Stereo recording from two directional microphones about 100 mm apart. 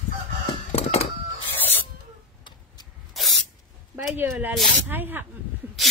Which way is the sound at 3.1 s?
Centre (ahead or behind).